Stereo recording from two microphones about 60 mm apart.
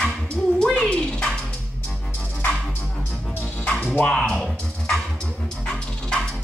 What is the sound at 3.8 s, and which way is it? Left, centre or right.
Music, centre.